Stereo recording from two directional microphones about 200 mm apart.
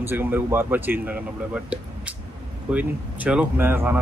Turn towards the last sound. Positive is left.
turn(degrees=-10)  # may be behind; listen again after turning